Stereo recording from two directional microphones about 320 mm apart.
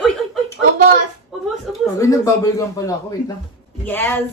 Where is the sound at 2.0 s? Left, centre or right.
Centre.